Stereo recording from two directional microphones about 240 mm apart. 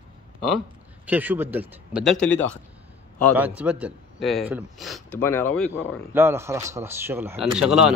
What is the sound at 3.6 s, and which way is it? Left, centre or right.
Speech, centre.